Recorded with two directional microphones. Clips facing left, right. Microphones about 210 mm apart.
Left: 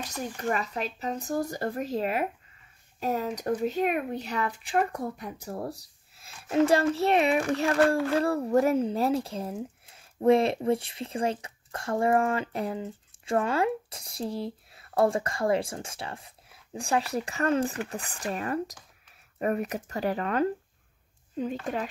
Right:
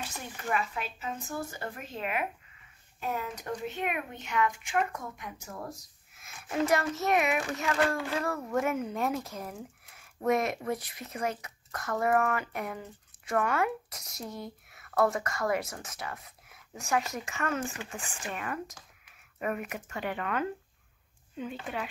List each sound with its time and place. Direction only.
0.0 s speech: 40° left (ahead or behind)